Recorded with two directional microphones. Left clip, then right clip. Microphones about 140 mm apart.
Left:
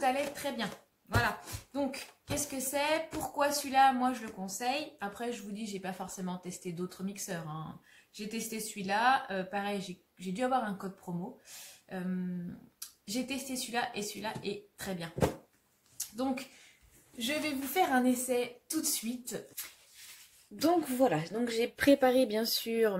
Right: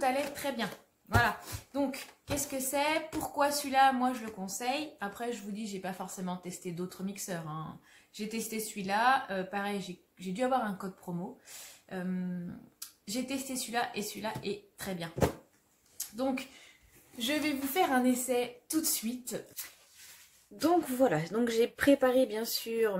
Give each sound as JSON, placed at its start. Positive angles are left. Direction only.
{"t": 0.0, "sound": "a woman's voice", "side_deg": 0}
{"t": 13.0, "sound": "a woman's voice", "side_deg": -5}
{"t": 17.2, "sound": "a woman's voice", "side_deg": -5}
{"t": 20.5, "sound": "a woman's voice", "side_deg": 15}
{"t": 21.2, "sound": "speech", "side_deg": -15}
{"t": 21.9, "sound": "speech", "side_deg": 25}